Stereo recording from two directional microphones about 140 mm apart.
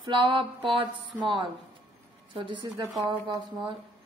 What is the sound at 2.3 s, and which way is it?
Speech, 35° right (ahead or behind).